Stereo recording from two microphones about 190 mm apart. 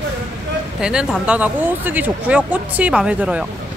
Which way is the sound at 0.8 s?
5° right (ahead or behind).